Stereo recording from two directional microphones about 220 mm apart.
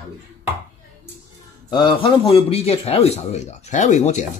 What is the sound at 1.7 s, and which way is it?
A man's voice, 20° left (ahead or behind).